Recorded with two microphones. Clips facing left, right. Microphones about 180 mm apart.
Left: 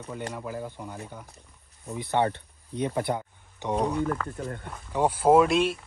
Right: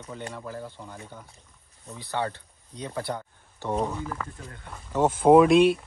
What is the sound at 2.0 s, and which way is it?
Speech, 20° left (ahead or behind).